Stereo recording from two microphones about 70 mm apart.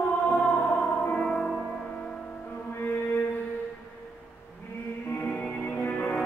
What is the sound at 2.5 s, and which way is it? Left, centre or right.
Music, left.